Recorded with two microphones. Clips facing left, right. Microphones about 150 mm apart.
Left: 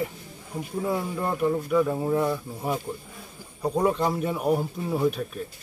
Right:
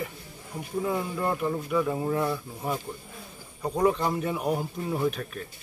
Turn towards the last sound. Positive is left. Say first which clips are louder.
# left 3 dB
turn(degrees=5)  # may be behind; listen again after turning